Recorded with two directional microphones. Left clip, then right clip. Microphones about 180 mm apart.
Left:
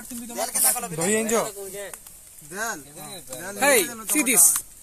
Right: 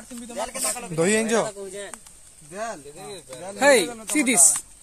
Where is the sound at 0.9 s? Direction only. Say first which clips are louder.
Right 4 dB; 75° right (ahead or behind).